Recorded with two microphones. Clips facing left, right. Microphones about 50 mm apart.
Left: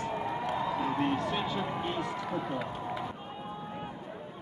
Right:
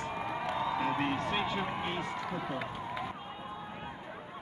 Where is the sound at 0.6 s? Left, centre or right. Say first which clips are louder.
Even; right.